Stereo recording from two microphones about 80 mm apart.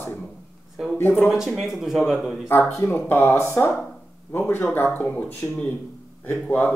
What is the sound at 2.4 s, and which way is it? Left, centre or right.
Speech, left.